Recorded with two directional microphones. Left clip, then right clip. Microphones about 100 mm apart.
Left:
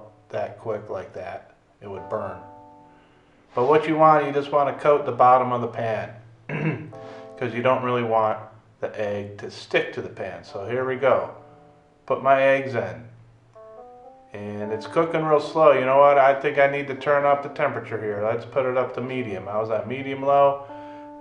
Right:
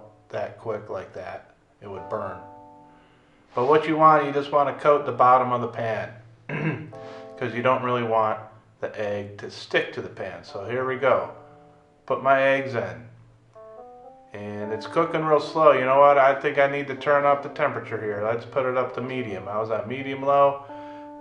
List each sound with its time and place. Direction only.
0.3 s speech: 5° left (ahead or behind)
3.5 s a man's voice: 5° left (ahead or behind)
14.3 s a man's voice: 5° left (ahead or behind)